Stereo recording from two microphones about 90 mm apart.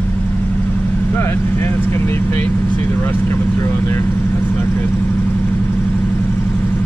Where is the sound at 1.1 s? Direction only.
25° left (ahead or behind).